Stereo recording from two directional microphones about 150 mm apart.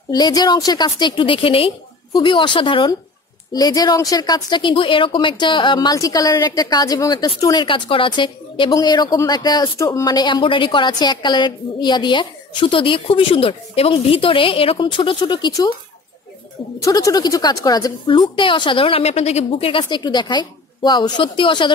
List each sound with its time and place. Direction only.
0.1 s a woman's voice: 25° left (ahead or behind)
16.8 s a woman's voice: 25° left (ahead or behind)